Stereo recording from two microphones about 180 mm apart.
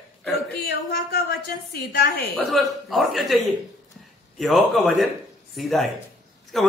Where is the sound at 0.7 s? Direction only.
60° left (ahead or behind).